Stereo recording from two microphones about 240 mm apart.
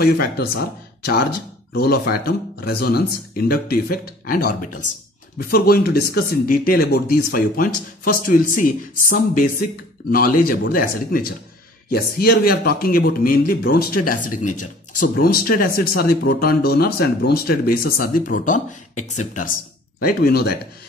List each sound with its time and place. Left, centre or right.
0.0 s a man's voice: left